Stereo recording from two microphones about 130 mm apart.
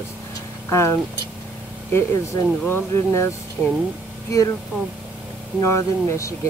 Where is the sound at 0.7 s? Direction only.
20° left (ahead or behind).